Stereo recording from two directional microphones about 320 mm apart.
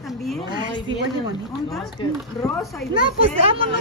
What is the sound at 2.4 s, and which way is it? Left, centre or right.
Speech, centre.